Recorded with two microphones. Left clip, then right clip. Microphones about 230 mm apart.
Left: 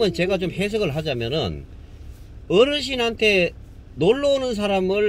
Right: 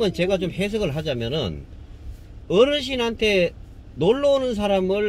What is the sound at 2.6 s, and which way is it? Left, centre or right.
Speech, left.